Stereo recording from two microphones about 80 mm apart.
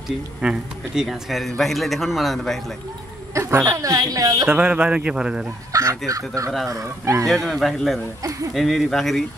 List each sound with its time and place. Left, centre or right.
0.4 s a man's voice: centre
1.0 s a man's voice: centre
3.3 s speech: right
4.5 s a man's voice: centre
5.7 s speech: right
7.2 s a man's voice: centre
8.2 s speech: right
8.5 s a man's voice: centre